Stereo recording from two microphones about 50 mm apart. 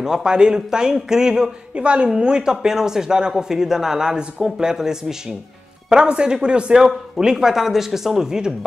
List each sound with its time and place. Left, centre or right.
0.0 s speech: centre
1.8 s a woman's voice: right